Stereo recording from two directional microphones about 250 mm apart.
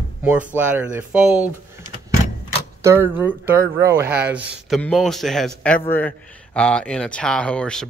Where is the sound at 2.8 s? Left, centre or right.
Centre.